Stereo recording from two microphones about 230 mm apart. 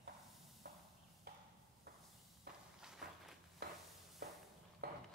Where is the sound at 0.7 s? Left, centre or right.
Right.